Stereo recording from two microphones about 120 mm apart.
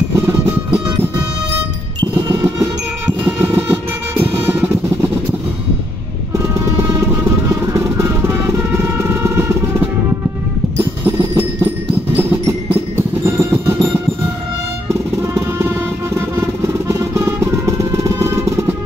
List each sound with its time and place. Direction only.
2.0 s music: 35° right (ahead or behind)
3.3 s train: 15° right (ahead or behind)
4.2 s music: 20° right (ahead or behind)
6.3 s music: 25° right (ahead or behind)
10.8 s music: 20° right (ahead or behind)
15.6 s music: 20° right (ahead or behind)